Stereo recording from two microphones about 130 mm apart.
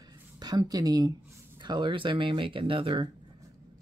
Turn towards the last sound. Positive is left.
turn(degrees=-40)  # may be behind; listen again after turning